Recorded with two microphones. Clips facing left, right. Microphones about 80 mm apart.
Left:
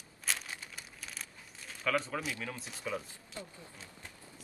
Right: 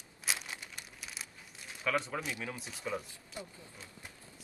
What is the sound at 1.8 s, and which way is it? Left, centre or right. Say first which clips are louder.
A man's voice: left 1 dB; centre.